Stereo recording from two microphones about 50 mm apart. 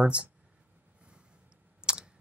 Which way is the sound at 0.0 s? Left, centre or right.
Right.